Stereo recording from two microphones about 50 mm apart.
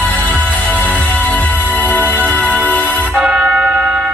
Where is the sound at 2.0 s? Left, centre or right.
Right.